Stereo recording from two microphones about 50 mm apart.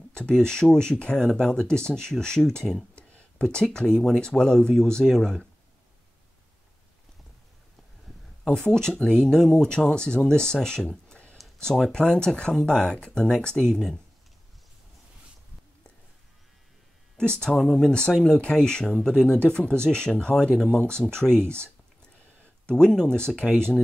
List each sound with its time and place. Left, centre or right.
0.3 s speech: centre
8.5 s speech: centre
10.8 s a sound: left
11.3 s a sound: centre
11.9 s speech: centre
17.2 s speech: centre
17.6 s speech: centre
17.8 s speech: centre
22.7 s speech: centre